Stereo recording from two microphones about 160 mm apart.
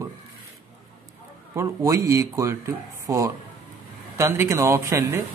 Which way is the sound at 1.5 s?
20° right (ahead or behind).